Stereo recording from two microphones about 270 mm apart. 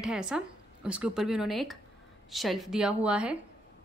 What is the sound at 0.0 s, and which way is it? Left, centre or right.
A woman's voice, centre.